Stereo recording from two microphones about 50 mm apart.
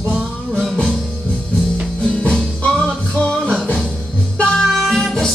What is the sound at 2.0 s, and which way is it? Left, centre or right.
Music, centre.